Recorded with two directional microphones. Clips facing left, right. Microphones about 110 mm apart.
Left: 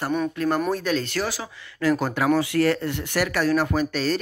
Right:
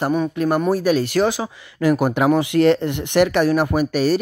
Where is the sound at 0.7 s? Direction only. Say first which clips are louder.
Right 7 dB; 10° right (ahead or behind).